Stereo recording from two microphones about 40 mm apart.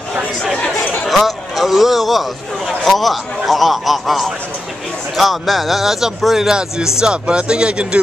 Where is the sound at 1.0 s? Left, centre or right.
Centre.